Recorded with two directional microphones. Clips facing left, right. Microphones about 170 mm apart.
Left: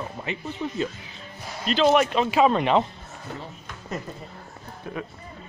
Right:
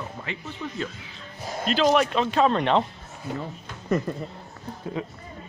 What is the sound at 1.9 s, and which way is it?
Speech, 5° left (ahead or behind).